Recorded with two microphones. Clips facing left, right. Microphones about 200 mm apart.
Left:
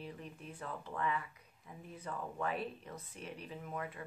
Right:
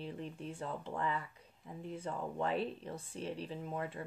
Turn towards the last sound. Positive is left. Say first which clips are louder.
# right 3 dB
turn(degrees=-30)  # may be behind; listen again after turning